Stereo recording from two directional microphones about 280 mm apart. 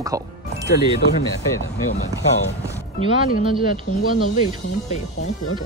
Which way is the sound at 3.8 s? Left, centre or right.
Left.